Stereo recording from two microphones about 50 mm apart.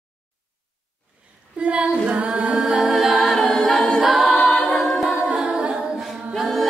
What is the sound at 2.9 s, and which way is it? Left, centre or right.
A capella, centre.